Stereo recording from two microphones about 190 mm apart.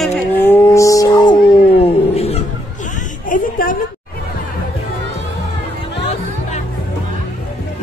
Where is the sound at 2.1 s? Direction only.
30° left (ahead or behind).